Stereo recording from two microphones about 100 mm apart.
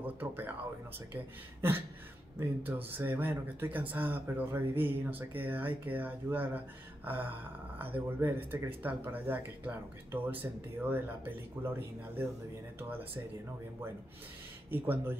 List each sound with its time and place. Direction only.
0.0 s speech: 20° right (ahead or behind)
7.8 s speech: 20° right (ahead or behind)
14.7 s speech: 20° right (ahead or behind)